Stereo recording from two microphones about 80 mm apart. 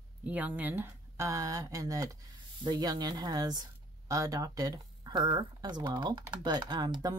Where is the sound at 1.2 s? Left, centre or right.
Right.